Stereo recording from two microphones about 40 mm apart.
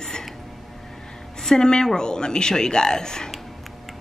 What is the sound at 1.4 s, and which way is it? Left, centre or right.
Speech, centre.